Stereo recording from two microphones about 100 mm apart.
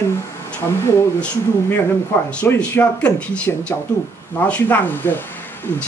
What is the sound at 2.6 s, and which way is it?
A woman's voice, 15° left (ahead or behind).